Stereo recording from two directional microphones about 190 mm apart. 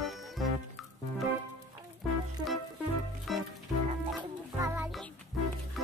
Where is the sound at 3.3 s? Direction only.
Centre (ahead or behind).